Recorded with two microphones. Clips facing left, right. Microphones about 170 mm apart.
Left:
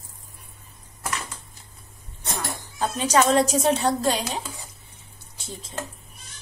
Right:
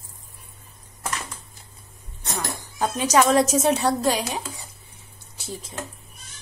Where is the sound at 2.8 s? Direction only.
10° right (ahead or behind).